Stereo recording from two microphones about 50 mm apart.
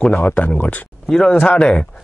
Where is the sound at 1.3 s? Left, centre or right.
Centre.